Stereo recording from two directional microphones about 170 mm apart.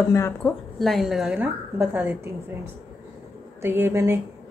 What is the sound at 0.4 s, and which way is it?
A woman's voice, centre (ahead or behind).